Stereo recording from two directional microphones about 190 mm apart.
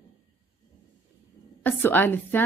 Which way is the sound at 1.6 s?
10° left (ahead or behind).